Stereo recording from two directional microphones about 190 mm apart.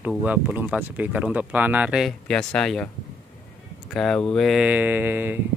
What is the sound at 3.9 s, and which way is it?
Speech, centre (ahead or behind).